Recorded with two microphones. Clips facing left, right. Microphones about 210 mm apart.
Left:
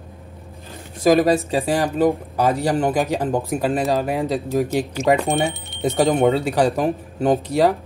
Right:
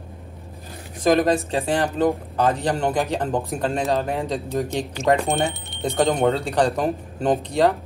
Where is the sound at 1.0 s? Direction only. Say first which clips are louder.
Left 3 dB; 10° left (ahead or behind).